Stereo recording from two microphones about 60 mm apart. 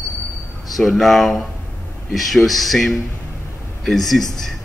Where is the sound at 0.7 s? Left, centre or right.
Centre.